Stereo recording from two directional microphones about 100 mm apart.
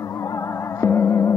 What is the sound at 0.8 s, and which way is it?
Music, 30° left (ahead or behind).